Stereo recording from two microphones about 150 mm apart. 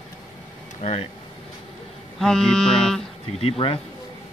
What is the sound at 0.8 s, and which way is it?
Speech, 50° left (ahead or behind).